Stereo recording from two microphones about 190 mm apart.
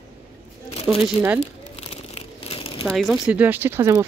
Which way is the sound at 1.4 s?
35° left (ahead or behind).